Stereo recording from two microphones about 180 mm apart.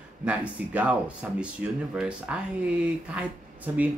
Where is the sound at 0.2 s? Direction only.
5° right (ahead or behind).